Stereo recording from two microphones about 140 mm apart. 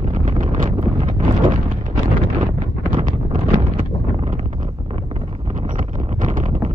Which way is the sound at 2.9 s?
70° right (ahead or behind).